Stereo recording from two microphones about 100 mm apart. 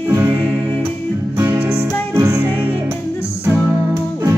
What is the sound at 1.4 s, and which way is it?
Music, 20° right (ahead or behind).